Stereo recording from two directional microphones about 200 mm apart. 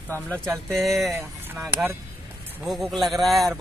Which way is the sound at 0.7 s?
Centre (ahead or behind).